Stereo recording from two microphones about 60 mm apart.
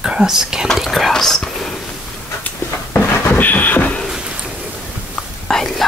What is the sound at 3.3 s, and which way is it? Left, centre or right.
Beatboxing, left.